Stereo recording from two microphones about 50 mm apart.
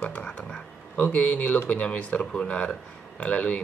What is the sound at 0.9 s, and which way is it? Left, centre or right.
Speech, left.